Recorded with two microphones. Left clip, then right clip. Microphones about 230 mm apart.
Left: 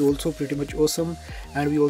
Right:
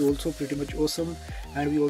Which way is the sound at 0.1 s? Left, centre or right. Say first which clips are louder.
Left 3 dB; centre.